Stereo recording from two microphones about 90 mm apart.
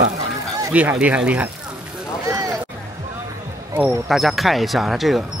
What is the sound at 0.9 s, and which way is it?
Speech, 15° right (ahead or behind).